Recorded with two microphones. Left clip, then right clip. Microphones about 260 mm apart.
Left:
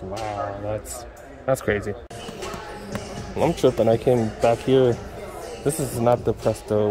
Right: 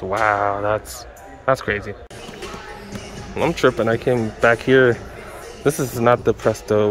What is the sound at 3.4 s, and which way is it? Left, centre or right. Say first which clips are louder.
Speech: right 2 dB; centre.